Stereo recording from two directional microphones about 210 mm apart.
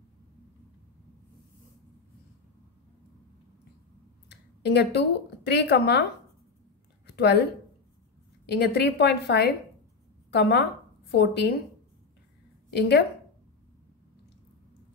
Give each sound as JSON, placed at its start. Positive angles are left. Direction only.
{"t": 4.3, "sound": "a sound", "side_deg": 50}
{"t": 5.5, "sound": "a woman's voice", "side_deg": 50}
{"t": 7.1, "sound": "a woman's voice", "side_deg": 50}
{"t": 8.5, "sound": "a woman's voice", "side_deg": 50}
{"t": 12.7, "sound": "a woman's voice", "side_deg": 50}